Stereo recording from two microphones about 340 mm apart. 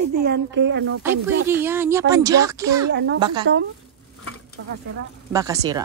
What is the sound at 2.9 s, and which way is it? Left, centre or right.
Speech, right.